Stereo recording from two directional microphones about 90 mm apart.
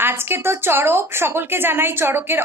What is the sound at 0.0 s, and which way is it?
A woman's voice, 25° right (ahead or behind).